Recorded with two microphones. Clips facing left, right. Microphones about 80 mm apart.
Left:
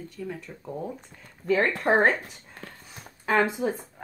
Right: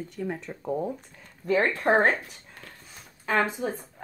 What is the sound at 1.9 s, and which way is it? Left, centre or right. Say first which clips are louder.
Speech: even; centre.